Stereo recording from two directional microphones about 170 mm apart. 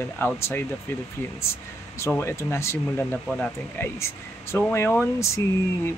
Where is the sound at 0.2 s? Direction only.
15° left (ahead or behind).